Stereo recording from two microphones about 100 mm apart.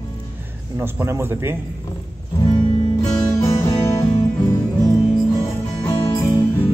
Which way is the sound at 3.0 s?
40° left (ahead or behind).